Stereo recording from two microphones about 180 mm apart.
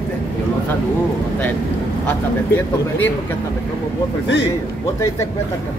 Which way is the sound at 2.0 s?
10° left (ahead or behind).